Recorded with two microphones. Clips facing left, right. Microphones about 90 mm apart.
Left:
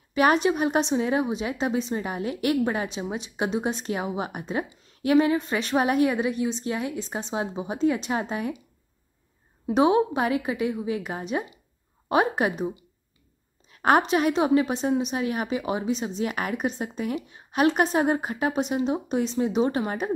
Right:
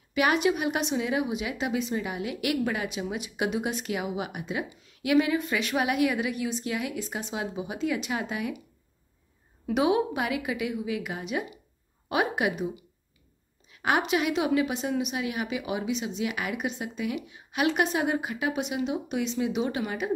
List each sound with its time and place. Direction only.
0.1 s a woman's voice: 35° left (ahead or behind)
9.7 s a woman's voice: 35° left (ahead or behind)